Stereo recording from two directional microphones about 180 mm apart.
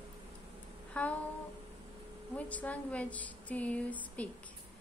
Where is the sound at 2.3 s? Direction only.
10° left (ahead or behind).